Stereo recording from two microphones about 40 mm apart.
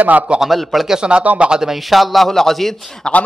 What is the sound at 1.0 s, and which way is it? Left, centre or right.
Speech, right.